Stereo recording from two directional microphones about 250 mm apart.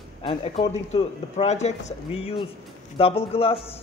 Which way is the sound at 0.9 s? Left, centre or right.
Left.